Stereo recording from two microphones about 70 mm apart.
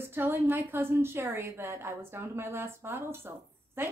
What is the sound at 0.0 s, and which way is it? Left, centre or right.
A woman's voice, right.